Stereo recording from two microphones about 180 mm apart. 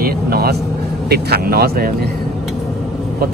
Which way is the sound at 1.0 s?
60° right (ahead or behind).